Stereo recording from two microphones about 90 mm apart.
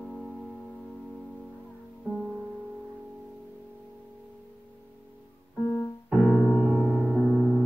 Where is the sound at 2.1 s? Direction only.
15° right (ahead or behind).